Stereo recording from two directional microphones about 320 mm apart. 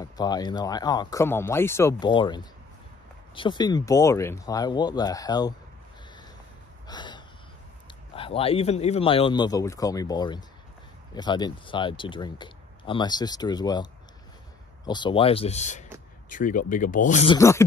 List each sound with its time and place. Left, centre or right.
0.0 s speech: centre
6.9 s gasp: centre
8.2 s speech: centre
14.9 s speech: centre
17.4 s speech: centre